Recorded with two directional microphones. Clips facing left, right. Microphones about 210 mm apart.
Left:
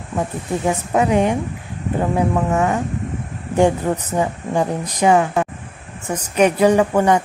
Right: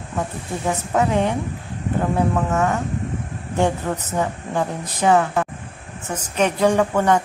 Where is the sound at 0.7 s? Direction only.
15° left (ahead or behind).